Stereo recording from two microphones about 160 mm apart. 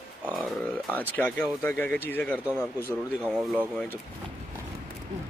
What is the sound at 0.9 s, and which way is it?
Speech, 10° left (ahead or behind).